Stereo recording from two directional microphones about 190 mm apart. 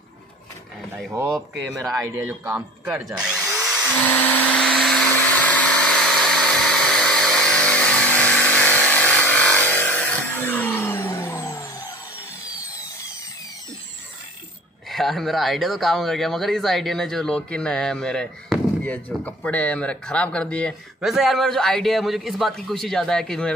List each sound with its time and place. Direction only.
1.1 s speech: 5° right (ahead or behind)
1.8 s speech: 20° right (ahead or behind)
2.2 s speech: 5° right (ahead or behind)
4.0 s blender: 10° left (ahead or behind)
6.5 s power tool: 5° left (ahead or behind)
14.9 s speech: centre (ahead or behind)